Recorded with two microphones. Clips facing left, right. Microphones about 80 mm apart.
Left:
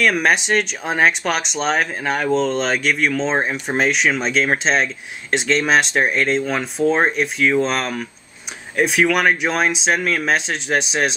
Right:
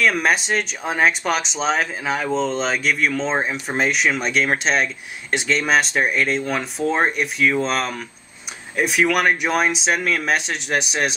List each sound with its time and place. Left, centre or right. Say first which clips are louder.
0.0 s speech: left 2 dB; centre